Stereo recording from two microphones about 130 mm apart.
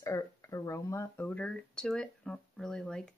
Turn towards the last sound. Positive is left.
turn(degrees=5)  # may be behind; listen again after turning